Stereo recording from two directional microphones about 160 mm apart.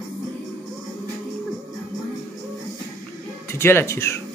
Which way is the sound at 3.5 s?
15° left (ahead or behind).